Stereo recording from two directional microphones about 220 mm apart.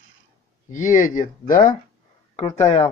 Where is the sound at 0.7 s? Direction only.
35° left (ahead or behind).